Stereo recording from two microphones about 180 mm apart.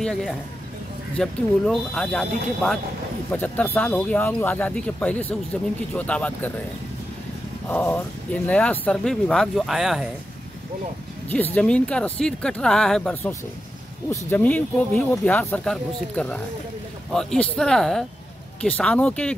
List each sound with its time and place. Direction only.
0.0 s speech: centre (ahead or behind)
7.6 s speech: 10° left (ahead or behind)
11.2 s speech: 10° left (ahead or behind)